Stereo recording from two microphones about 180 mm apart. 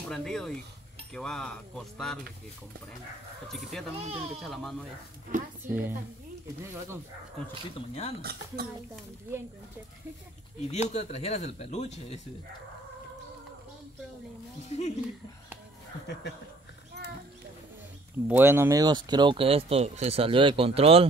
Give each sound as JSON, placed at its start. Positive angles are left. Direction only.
{"t": 0.1, "sound": "speech", "side_deg": 5}
{"t": 3.5, "sound": "speech", "side_deg": 0}
{"t": 4.0, "sound": "speech", "side_deg": -35}
{"t": 4.4, "sound": "speech", "side_deg": 0}
{"t": 5.6, "sound": "a woman's voice", "side_deg": -10}
{"t": 7.7, "sound": "speech", "side_deg": 35}
{"t": 8.2, "sound": "speech", "side_deg": -60}
{"t": 10.7, "sound": "speech", "side_deg": 40}
{"t": 14.7, "sound": "speech", "side_deg": 40}
{"t": 18.3, "sound": "speech", "side_deg": -10}